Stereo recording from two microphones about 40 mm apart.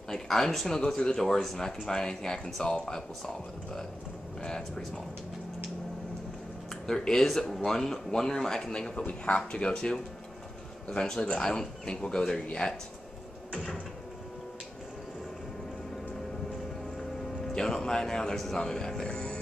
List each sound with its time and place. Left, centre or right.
0.1 s speech: centre
6.9 s speech: centre
17.5 s speech: centre